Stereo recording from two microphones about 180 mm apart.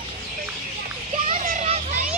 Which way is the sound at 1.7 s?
40° right (ahead or behind).